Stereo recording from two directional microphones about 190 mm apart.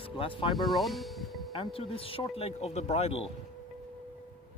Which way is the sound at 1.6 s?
30° left (ahead or behind).